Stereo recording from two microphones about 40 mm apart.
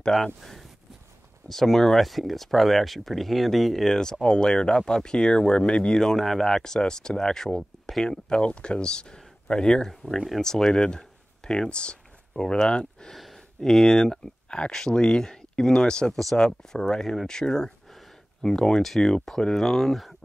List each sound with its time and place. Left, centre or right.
0.4 s speech: centre
3.9 s speech: centre
5.9 s speech: centre
10.8 s a sound: centre
11.7 s speech: left
13.1 s speech: centre